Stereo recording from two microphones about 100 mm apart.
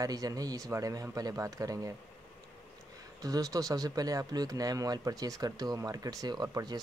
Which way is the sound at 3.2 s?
35° right (ahead or behind).